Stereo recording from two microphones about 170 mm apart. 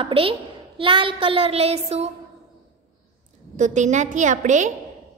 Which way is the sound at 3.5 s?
45° right (ahead or behind).